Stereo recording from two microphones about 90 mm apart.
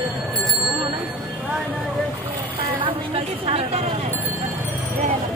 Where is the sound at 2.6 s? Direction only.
90° right.